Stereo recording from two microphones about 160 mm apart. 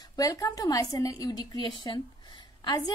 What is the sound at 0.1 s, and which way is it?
A woman's voice, 20° left (ahead or behind).